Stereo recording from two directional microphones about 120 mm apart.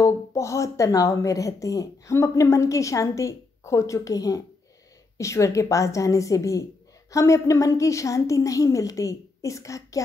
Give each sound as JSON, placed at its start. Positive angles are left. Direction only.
{"t": 0.0, "sound": "speech", "side_deg": 25}